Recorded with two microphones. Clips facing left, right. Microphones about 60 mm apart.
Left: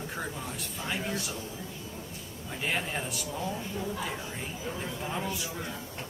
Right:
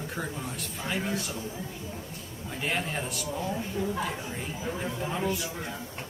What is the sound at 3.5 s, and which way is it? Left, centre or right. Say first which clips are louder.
A woman's voice: right 4 dB; centre.